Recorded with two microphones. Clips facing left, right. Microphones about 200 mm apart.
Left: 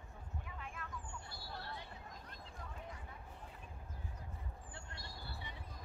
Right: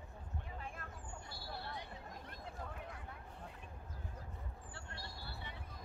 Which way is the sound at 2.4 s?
60° right (ahead or behind).